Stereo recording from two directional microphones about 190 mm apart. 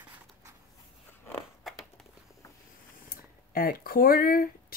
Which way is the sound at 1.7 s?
Centre (ahead or behind).